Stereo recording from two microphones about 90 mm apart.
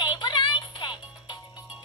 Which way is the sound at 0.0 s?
60° left (ahead or behind).